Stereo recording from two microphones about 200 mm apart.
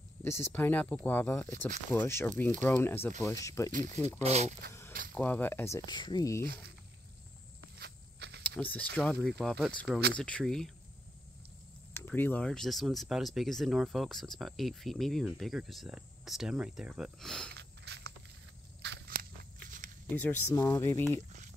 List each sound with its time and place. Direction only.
0.2 s speech: 10° left (ahead or behind)
3.7 s speech: 35° right (ahead or behind)
5.1 s speech: 10° left (ahead or behind)
5.9 s speech: 20° left (ahead or behind)
6.4 s speech: 50° right (ahead or behind)
7.8 s walk: 55° right (ahead or behind)
8.4 s a sound: 10° left (ahead or behind)
8.9 s speech: 5° left (ahead or behind)
11.9 s speech: 10° left (ahead or behind)
17.6 s a sound: 55° right (ahead or behind)
18.8 s walk: 55° right (ahead or behind)
20.1 s speech: 10° left (ahead or behind)
21.1 s speech: 35° right (ahead or behind)